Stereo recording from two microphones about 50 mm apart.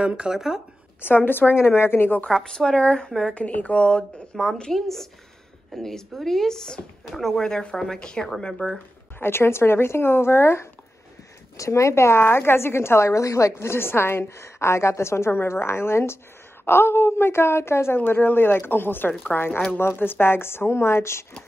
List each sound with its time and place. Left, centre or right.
0.2 s speech: centre
1.0 s a woman's voice: left
2.2 s speech: centre
3.3 s speech: left
4.4 s speech: centre
9.2 s a woman's voice: left
11.5 s a woman's voice: left